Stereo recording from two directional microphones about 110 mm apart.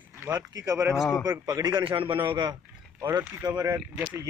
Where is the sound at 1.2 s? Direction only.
30° right (ahead or behind).